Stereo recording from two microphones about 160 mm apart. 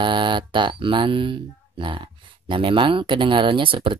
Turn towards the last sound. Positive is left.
turn(degrees=-35)  # may be behind; listen again after turning